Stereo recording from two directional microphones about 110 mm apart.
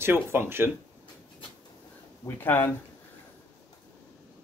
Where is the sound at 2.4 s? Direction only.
20° left (ahead or behind).